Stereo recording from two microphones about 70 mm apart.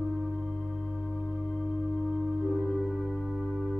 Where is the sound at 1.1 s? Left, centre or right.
Centre.